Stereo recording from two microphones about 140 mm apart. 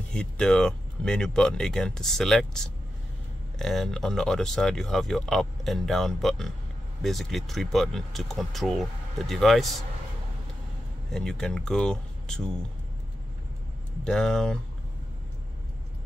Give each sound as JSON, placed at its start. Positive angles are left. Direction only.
{"t": 0.1, "sound": "speech", "side_deg": 5}
{"t": 11.1, "sound": "speech", "side_deg": 5}
{"t": 14.0, "sound": "speech", "side_deg": 5}